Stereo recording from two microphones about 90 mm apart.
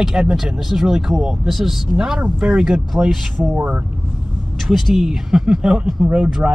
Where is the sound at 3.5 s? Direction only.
20° right (ahead or behind).